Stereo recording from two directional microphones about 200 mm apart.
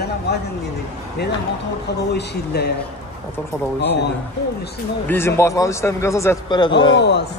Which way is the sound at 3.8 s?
60° left (ahead or behind).